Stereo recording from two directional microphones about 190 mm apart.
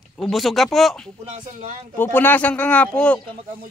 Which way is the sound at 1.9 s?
10° left (ahead or behind).